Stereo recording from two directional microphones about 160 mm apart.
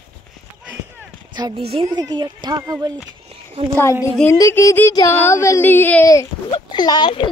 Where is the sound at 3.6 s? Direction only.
40° right (ahead or behind).